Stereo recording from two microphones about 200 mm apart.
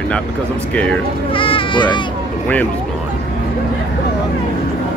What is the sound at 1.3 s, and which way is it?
Children playing, 25° left (ahead or behind).